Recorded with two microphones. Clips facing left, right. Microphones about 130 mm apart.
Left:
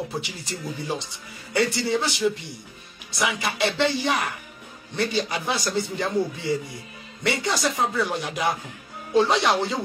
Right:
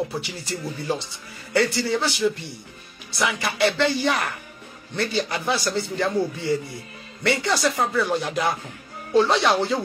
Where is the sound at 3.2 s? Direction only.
20° left (ahead or behind).